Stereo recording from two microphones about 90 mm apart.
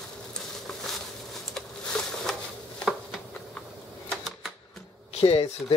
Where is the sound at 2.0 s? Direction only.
5° left (ahead or behind).